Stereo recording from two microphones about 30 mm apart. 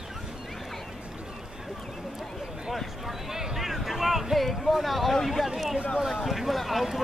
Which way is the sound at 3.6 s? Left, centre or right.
Centre.